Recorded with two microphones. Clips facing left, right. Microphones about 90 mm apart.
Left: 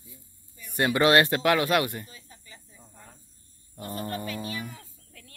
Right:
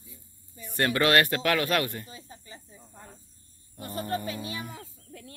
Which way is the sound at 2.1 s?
30° right (ahead or behind).